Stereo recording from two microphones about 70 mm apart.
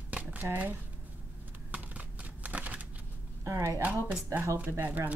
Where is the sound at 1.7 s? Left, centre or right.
Centre.